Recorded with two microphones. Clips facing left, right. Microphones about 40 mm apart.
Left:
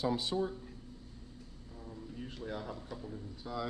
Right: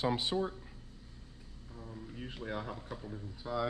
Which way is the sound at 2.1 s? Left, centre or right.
Right.